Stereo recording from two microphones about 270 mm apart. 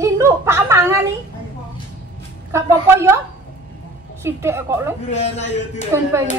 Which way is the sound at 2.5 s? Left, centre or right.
Centre.